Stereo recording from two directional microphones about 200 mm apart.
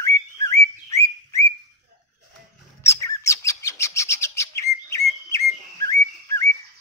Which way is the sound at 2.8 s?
15° left (ahead or behind).